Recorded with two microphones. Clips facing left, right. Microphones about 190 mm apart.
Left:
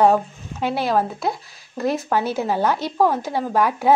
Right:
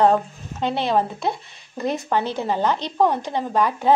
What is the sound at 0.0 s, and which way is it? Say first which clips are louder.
Speech: left 1 dB; 5° left (ahead or behind).